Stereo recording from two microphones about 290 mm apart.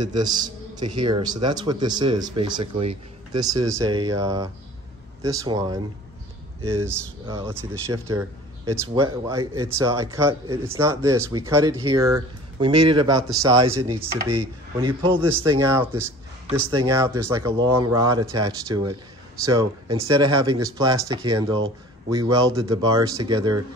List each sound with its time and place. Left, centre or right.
0.1 s speech: centre
6.8 s speech: centre